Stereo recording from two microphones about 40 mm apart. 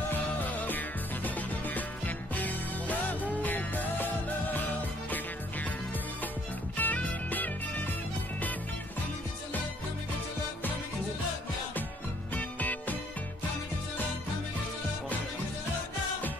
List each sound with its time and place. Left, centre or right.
0.4 s music: left
6.8 s music: left
12.4 s music: left